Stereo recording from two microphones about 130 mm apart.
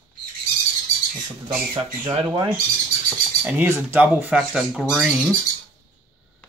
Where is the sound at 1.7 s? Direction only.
45° right (ahead or behind).